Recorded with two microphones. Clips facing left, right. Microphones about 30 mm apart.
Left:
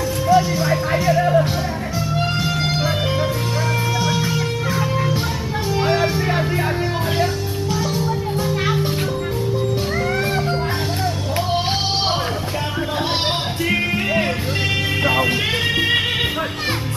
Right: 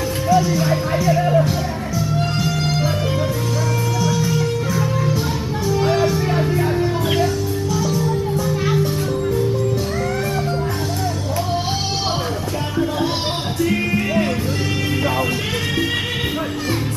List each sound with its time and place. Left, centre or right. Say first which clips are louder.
0.3 s music: left 1 dB; left
2.1 s music: left 2 dB; left
4.0 s music: right 1 dB; left
5.7 s music: right 1 dB; left
7.7 s music: right 1 dB; left
13.7 s music: left 1 dB; left